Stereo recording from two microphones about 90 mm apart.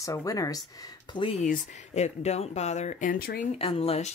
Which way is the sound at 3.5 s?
90° left.